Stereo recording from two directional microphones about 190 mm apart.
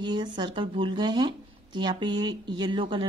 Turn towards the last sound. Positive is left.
turn(degrees=-25)  # may be behind; listen again after turning